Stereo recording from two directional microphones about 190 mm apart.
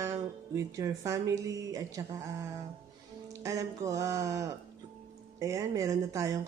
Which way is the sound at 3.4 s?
20° right (ahead or behind).